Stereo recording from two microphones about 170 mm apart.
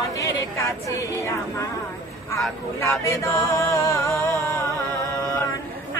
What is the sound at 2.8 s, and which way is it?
Music, 15° left (ahead or behind).